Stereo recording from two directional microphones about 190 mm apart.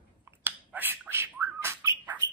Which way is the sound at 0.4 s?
10° right (ahead or behind).